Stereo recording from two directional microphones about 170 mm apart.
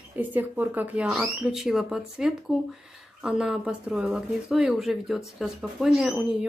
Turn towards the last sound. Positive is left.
turn(degrees=-5)  # may be behind; listen again after turning